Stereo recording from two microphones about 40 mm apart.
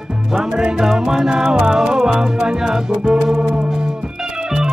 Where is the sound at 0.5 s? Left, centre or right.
Centre.